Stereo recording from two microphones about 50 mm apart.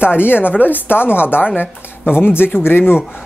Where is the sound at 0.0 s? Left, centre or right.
Left.